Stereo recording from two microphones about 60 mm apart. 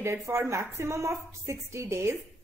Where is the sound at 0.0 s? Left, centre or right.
Right.